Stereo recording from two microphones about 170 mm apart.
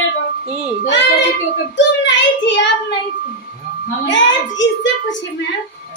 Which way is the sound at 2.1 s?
90° left.